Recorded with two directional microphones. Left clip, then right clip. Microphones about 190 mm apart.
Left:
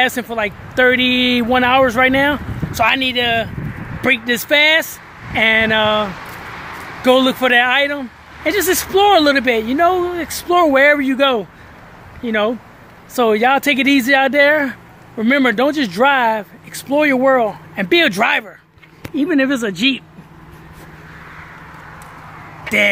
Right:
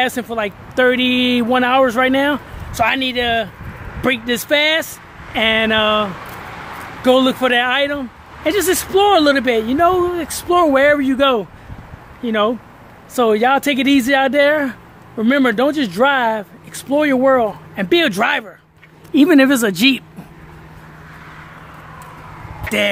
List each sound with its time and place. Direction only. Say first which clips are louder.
0.0 s speech: left 2 dB; centre (ahead or behind)
19.1 s speech: right 5 dB; 35° right (ahead or behind)